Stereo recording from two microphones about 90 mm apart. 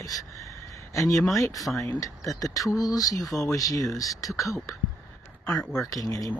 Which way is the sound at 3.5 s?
40° left (ahead or behind).